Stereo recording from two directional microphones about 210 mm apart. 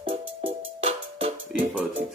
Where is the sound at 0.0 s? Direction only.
25° right (ahead or behind).